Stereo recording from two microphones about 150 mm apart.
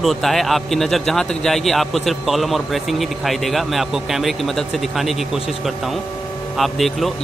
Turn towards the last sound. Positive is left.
turn(degrees=0)  # may be behind; listen again after turning